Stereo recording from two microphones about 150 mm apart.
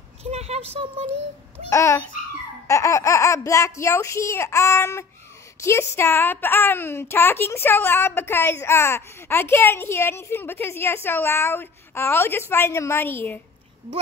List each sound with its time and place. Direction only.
0.2 s speech: 45° right (ahead or behind)
1.7 s speech: 20° left (ahead or behind)